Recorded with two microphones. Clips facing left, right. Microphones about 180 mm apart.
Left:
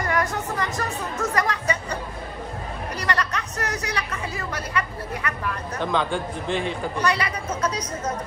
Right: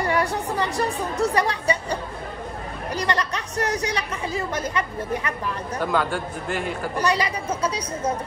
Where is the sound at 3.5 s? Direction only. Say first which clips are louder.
Right 6 dB; 35° right (ahead or behind).